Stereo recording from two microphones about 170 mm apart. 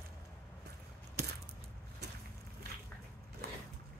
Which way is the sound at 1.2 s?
75° right (ahead or behind).